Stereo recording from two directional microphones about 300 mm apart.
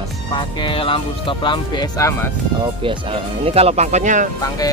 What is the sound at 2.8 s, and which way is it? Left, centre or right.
Speech, centre.